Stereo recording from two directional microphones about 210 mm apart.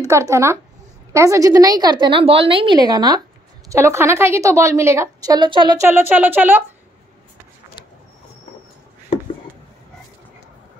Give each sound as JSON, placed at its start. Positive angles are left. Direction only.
{"t": 0.0, "sound": "a woman's voice", "side_deg": -15}
{"t": 5.9, "sound": "a woman's voice", "side_deg": -10}